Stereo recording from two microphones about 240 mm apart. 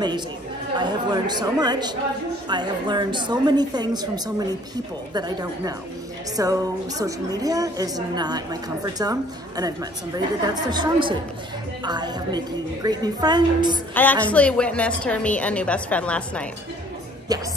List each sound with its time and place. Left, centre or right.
0.7 s a woman's voice: centre
13.9 s a woman's voice: centre
17.3 s a woman's voice: centre